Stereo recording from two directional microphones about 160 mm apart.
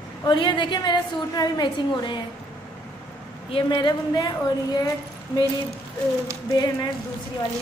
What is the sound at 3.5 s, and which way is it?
Speech, 30° left (ahead or behind).